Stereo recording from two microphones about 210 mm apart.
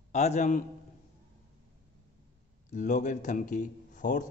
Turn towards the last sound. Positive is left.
turn(degrees=35)  # may be behind; listen again after turning